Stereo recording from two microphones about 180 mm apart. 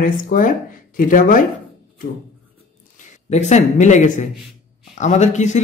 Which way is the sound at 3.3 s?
40° left (ahead or behind).